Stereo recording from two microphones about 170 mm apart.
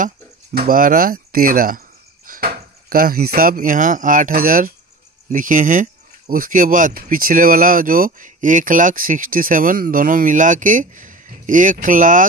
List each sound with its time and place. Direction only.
0.6 s speech: 55° right (ahead or behind)